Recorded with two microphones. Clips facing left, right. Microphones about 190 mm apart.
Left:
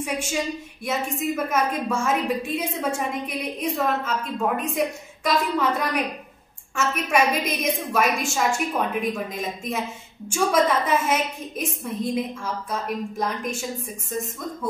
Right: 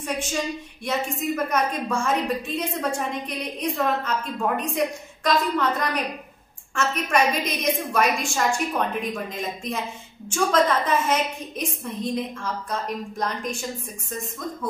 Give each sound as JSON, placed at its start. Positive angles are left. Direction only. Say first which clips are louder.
{"t": 0.0, "sound": "a woman's voice", "louder": "left 1 dB", "side_deg": 10}